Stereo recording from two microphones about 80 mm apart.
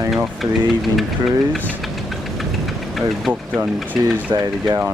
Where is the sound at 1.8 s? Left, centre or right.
Centre.